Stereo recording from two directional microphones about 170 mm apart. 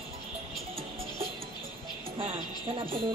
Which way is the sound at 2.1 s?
30° right (ahead or behind).